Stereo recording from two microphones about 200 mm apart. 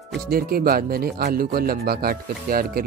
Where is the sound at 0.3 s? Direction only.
50° right (ahead or behind).